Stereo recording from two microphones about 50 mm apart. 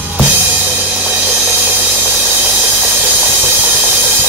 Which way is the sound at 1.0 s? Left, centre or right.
Right.